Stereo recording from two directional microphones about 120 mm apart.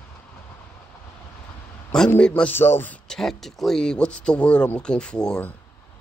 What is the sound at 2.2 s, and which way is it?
Speech, 10° left (ahead or behind).